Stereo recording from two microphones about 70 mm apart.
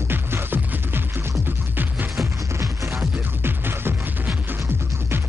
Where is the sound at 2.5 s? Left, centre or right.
Right.